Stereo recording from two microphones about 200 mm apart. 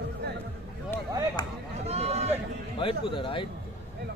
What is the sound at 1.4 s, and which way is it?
Speech, 20° left (ahead or behind).